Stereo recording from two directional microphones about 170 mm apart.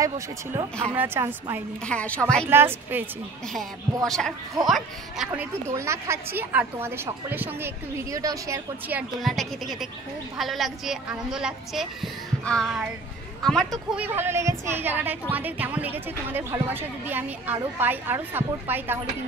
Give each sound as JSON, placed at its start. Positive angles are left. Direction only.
{"t": 0.0, "sound": "a woman's voice", "side_deg": -20}
{"t": 1.9, "sound": "a woman's voice", "side_deg": 5}
{"t": 2.4, "sound": "a woman's voice", "side_deg": -15}
{"t": 3.5, "sound": "a woman's voice", "side_deg": 5}
{"t": 9.2, "sound": "a woman's voice", "side_deg": 0}
{"t": 13.9, "sound": "a woman's voice", "side_deg": -10}